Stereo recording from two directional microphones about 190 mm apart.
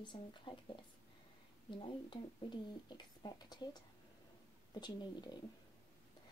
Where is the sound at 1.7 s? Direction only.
25° left (ahead or behind).